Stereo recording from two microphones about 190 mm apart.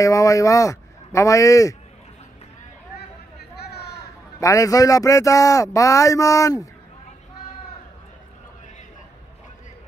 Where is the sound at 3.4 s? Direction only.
60° left (ahead or behind).